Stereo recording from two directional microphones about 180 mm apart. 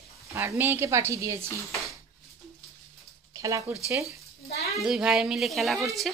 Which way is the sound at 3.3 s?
20° right (ahead or behind).